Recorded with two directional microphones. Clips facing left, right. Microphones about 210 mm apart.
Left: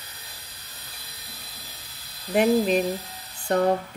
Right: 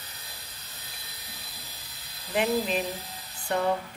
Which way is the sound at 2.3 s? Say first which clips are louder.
Left 6 dB; 45° left (ahead or behind).